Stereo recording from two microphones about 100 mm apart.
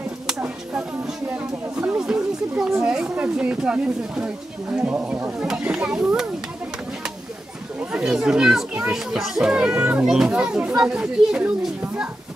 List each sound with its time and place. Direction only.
0.4 s a sound: 15° right (ahead or behind)
2.0 s speech: 10° right (ahead or behind)
7.8 s speech: 10° right (ahead or behind)